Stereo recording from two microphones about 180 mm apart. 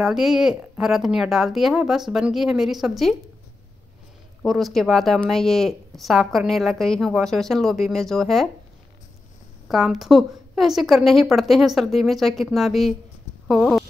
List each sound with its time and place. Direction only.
0.0 s speech: centre (ahead or behind)
4.4 s speech: centre (ahead or behind)
9.7 s speech: centre (ahead or behind)